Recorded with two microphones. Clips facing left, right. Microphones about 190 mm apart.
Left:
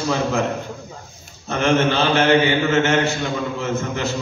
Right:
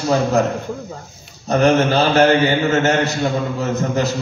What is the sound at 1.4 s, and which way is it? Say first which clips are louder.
A man's voice: right 4 dB; 40° right (ahead or behind).